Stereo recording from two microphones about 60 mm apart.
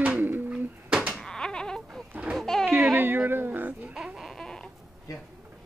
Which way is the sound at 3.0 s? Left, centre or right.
Right.